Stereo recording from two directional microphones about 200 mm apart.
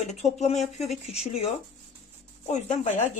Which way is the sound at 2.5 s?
35° left (ahead or behind).